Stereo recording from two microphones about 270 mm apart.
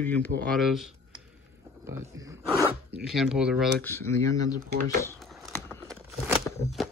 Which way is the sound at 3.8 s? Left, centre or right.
Centre.